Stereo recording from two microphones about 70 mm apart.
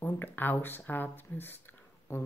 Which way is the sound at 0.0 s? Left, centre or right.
Left.